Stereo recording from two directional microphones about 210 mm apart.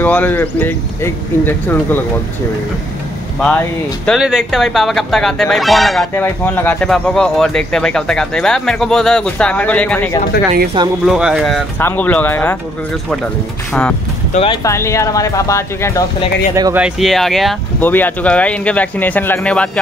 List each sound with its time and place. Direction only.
0.0 s speech: 10° left (ahead or behind)
3.3 s speech: 5° left (ahead or behind)
14.3 s speech: 25° left (ahead or behind)
14.6 s speech: 15° left (ahead or behind)
16.5 s speech: 15° right (ahead or behind)
16.8 s speech: centre (ahead or behind)